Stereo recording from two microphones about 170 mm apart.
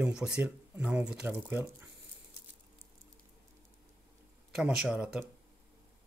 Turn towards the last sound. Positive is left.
turn(degrees=-5)  # may be behind; listen again after turning